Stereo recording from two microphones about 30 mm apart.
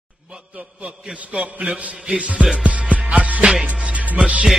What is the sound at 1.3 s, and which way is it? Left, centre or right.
Music, right.